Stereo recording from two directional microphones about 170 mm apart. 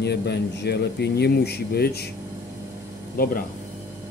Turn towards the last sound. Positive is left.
turn(degrees=60)  # may be behind; listen again after turning